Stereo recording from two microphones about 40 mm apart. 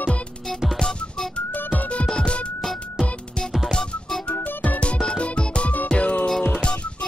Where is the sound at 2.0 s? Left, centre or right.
Left.